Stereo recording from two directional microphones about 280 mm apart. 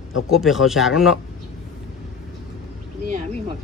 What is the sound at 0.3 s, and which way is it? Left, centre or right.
Speech, centre.